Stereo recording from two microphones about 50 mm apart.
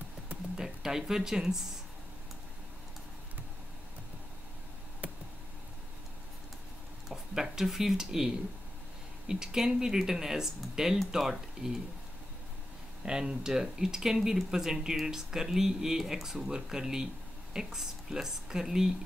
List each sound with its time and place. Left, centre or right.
0.6 s speech: centre
5.0 s a sound: right
7.1 s speech: centre
9.3 s speech: centre
13.0 s speech: centre